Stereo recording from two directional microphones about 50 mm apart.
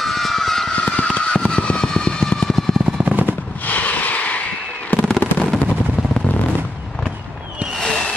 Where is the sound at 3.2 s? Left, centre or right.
Left.